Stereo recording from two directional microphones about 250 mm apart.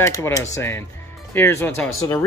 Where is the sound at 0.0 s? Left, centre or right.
Centre.